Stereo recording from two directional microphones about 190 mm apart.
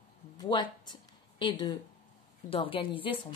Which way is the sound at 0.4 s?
25° left (ahead or behind).